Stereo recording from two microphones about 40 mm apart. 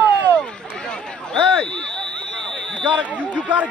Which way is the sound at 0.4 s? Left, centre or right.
Left.